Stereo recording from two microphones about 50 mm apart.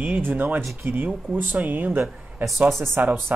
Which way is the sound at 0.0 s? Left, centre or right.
Right.